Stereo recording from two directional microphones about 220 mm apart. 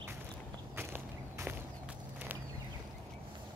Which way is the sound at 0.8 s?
10° right (ahead or behind).